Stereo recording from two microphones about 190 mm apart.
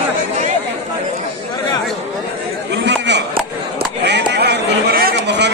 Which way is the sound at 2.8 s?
65° right (ahead or behind).